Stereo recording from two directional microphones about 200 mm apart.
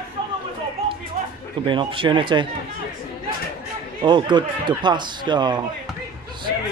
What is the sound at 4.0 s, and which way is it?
Speech, 20° right (ahead or behind).